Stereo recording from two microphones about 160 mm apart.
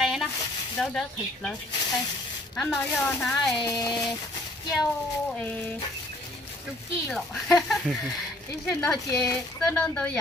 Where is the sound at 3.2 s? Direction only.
Centre (ahead or behind).